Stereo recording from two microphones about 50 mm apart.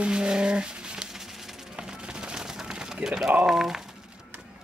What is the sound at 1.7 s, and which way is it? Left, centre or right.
Music, centre.